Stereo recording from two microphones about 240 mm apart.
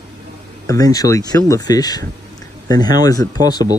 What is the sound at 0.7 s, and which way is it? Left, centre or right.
Speech, centre.